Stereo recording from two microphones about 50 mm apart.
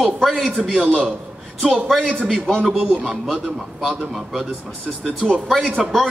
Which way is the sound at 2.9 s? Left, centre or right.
Right.